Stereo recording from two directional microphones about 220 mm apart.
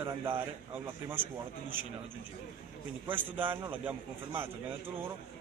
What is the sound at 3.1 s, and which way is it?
A man's voice, 10° right (ahead or behind).